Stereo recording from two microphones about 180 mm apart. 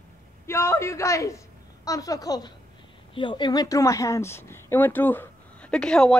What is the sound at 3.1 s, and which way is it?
Speech, 25° left (ahead or behind).